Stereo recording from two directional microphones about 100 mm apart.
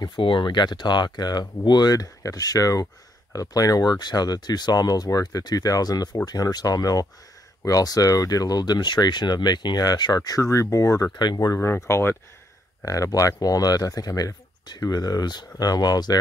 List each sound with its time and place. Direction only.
0.0 s speech: 55° left (ahead or behind); by 11.1 s 35° left (ahead or behind)
11.1 s speech: 45° left (ahead or behind); by 12.2 s 25° left (ahead or behind)
12.8 s speech: 35° left (ahead or behind)